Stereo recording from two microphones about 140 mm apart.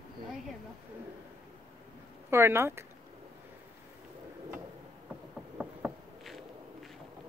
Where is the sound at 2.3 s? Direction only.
20° right (ahead or behind).